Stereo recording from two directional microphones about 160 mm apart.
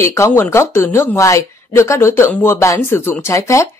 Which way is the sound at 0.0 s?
15° left (ahead or behind).